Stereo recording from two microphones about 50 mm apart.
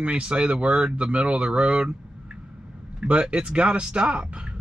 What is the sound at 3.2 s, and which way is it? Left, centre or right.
Speech, centre.